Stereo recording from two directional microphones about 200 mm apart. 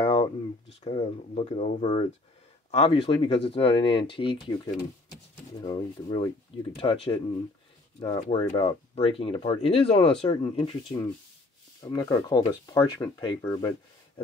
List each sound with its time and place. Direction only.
0.0 s a sound: 25° left (ahead or behind)
0.8 s speech: 30° left (ahead or behind)
8.5 s speech: 30° left (ahead or behind)